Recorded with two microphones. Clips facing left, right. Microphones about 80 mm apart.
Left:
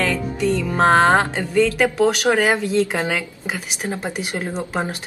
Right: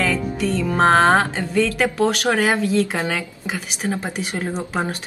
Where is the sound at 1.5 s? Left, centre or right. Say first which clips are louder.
Left 4 dB; centre.